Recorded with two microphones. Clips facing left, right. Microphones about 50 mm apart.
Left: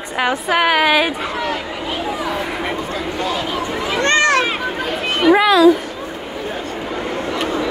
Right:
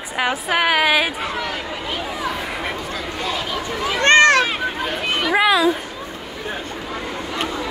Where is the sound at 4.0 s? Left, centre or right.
Right.